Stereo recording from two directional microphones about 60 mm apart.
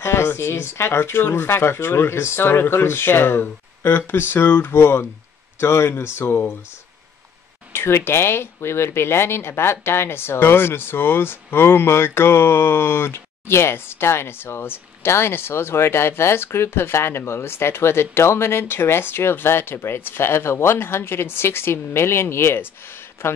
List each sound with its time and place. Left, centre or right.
0.0 s speech: left
7.7 s speech: left